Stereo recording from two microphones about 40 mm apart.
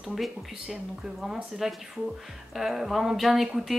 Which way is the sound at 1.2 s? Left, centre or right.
Centre.